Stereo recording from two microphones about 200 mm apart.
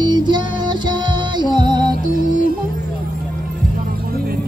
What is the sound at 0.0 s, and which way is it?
Music, 20° right (ahead or behind).